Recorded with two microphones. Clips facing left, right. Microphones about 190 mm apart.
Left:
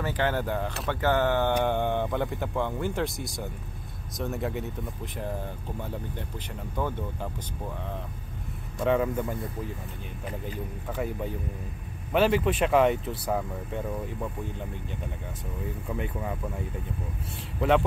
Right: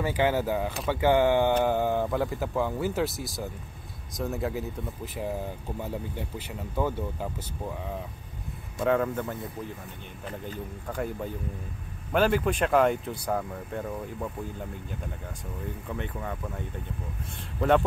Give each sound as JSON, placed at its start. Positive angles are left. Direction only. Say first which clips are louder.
{"t": 0.0, "sound": "speech", "louder": "right 2 dB", "side_deg": -10}
{"t": 8.8, "sound": "speech", "louder": "even", "side_deg": 5}
{"t": 15.6, "sound": "speech", "louder": "left 2 dB", "side_deg": 10}
{"t": 17.6, "sound": "speech", "louder": "even", "side_deg": 0}